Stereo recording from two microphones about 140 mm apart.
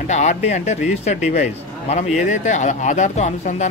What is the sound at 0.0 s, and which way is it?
Speech, 55° left (ahead or behind).